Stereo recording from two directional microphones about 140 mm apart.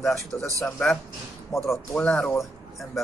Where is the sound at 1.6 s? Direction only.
5° left (ahead or behind).